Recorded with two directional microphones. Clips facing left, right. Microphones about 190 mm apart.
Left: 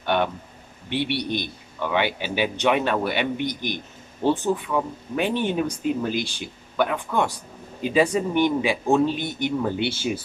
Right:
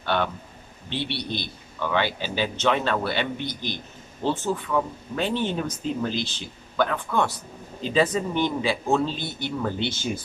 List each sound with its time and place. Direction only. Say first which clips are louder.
0.0 s a man's voice: left 2 dB; 15° left (ahead or behind)